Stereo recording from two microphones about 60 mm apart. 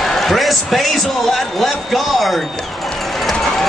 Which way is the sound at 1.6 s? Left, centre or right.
Centre.